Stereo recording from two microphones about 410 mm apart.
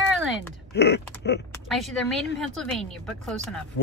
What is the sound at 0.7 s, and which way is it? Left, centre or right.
Creak, left.